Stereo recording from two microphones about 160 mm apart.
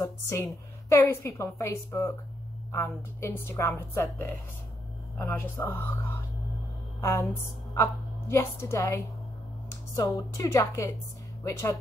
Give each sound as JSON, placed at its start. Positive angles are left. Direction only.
{"t": 0.0, "sound": "a sound", "side_deg": 20}
{"t": 0.8, "sound": "a woman's voice", "side_deg": 15}
{"t": 5.1, "sound": "a woman's voice", "side_deg": 10}